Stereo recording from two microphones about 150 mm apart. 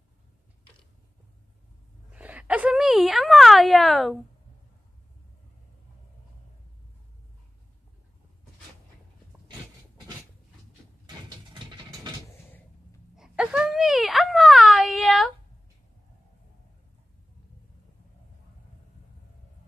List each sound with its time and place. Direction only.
2.0 s speech: 10° right (ahead or behind)
11.1 s vehicle: 30° right (ahead or behind)
13.1 s a sound: 5° right (ahead or behind)